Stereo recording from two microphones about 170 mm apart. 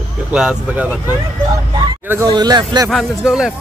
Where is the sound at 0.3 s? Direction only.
5° right (ahead or behind).